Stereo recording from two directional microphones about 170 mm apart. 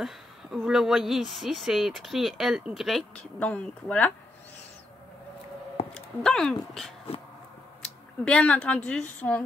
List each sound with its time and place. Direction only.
0.0 s speech: centre (ahead or behind)
5.9 s speech: 5° left (ahead or behind)
8.3 s a woman's voice: 5° left (ahead or behind)